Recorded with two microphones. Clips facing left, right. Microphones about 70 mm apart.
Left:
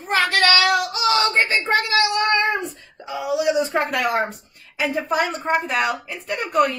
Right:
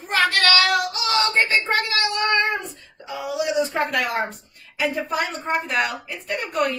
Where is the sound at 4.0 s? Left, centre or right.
Left.